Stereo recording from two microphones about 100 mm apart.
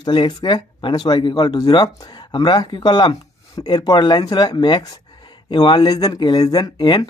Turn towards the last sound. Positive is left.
turn(degrees=45)  # may be behind; listen again after turning